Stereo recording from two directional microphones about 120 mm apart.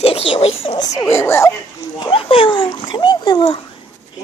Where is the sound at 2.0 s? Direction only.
50° left (ahead or behind).